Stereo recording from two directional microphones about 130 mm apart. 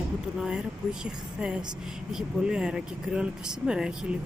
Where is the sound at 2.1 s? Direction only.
5° right (ahead or behind).